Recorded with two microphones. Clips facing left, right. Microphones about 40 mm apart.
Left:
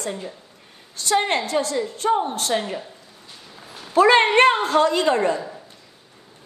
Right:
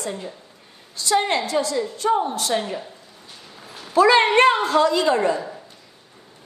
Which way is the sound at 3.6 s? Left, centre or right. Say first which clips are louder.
Even; centre.